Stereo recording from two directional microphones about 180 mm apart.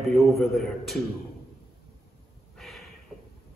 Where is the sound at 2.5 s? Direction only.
Centre (ahead or behind).